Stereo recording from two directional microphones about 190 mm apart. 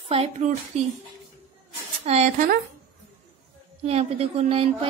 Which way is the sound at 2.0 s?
35° right (ahead or behind).